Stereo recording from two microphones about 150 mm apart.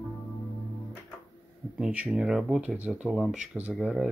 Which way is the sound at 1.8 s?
5° right (ahead or behind).